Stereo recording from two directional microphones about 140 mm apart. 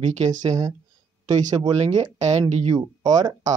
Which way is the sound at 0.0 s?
55° right (ahead or behind).